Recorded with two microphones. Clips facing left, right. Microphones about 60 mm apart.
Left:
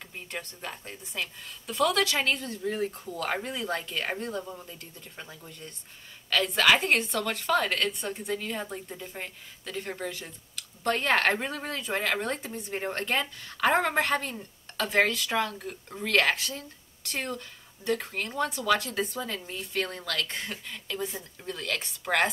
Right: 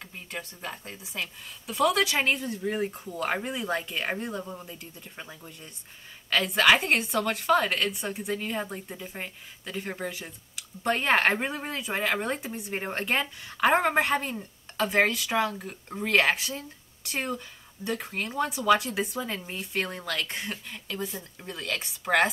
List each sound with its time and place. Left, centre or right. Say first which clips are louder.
0.3 s a woman's voice: right 1 dB; centre